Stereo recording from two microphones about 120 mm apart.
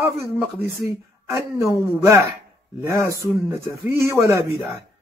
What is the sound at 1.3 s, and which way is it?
Speech, 20° right (ahead or behind).